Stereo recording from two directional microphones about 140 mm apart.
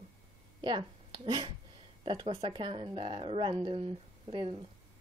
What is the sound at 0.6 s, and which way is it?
Speech, 35° right (ahead or behind).